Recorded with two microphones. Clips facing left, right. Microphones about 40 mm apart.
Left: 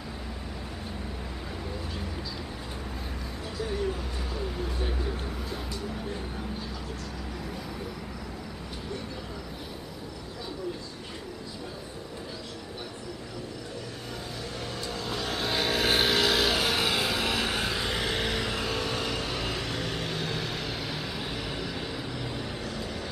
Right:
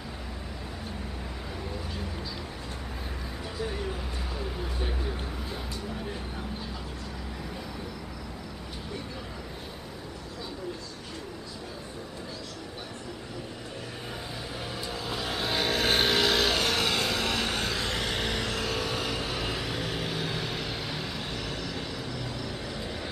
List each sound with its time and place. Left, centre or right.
3.6 s speech: centre
14.8 s vehicle: centre
22.7 s vehicle: centre